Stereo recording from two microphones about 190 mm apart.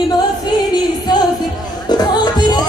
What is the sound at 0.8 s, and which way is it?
Music, 20° left (ahead or behind).